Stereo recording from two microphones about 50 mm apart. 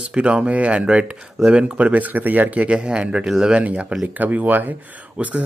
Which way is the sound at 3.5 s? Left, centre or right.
Right.